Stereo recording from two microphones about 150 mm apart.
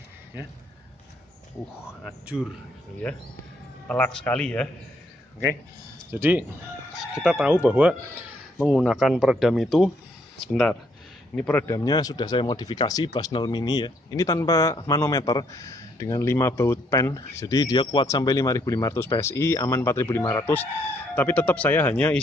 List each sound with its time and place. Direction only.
2.0 s speech: 5° right (ahead or behind)
3.8 s speech: 10° left (ahead or behind)
6.1 s speech: 15° right (ahead or behind); by 22.2 s 10° left (ahead or behind)